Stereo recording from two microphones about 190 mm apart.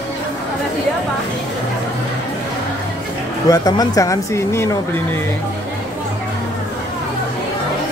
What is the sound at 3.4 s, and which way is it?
Speech, 20° left (ahead or behind).